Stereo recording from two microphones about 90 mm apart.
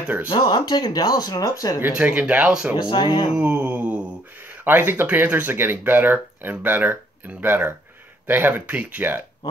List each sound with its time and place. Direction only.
0.3 s speech: 50° left (ahead or behind)
1.8 s speech: 15° right (ahead or behind)
2.8 s speech: 55° left (ahead or behind)
3.3 s mantra: 20° right (ahead or behind)
4.6 s speech: 25° right (ahead or behind)